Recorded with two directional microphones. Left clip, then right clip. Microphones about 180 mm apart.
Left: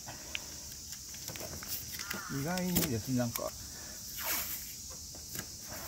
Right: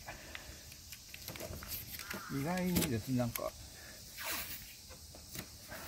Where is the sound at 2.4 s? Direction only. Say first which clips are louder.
Even; centre (ahead or behind).